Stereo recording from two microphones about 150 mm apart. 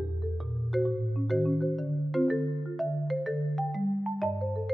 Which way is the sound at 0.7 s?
Centre (ahead or behind).